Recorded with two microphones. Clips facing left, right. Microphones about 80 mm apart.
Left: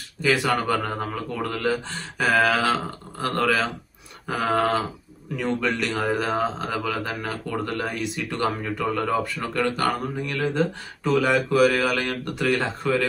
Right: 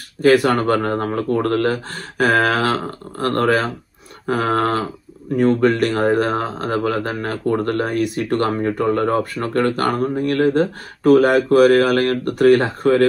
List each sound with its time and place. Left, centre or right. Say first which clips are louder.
0.2 s speech: right 8 dB; right